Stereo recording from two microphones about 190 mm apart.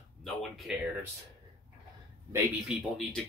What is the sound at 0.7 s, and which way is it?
Speech, 5° right (ahead or behind).